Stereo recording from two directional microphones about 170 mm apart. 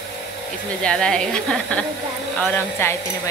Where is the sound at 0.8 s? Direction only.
5° left (ahead or behind).